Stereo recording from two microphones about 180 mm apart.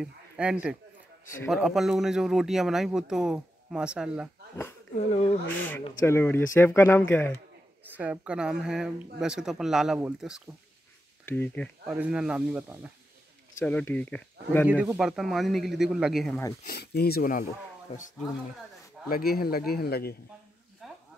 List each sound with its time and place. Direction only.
0.0 s speech: 5° right (ahead or behind)
5.6 s speech: 10° left (ahead or behind)
7.8 s speech: 10° right (ahead or behind)
11.2 s speech: 10° left (ahead or behind)
11.9 s speech: 5° right (ahead or behind)
13.6 s speech: 10° left (ahead or behind)
14.7 s speech: 10° right (ahead or behind)
16.6 s speech: 65° left (ahead or behind)
17.9 s speech: 35° left (ahead or behind)
19.0 s speech: 55° left (ahead or behind)
20.8 s a sound: centre (ahead or behind)